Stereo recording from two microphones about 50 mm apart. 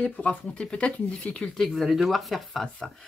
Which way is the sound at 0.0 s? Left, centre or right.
Left.